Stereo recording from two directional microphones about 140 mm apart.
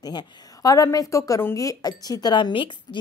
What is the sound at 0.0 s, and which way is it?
A woman's voice, 30° left (ahead or behind).